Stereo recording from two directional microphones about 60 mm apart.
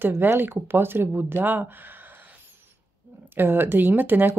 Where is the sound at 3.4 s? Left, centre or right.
Right.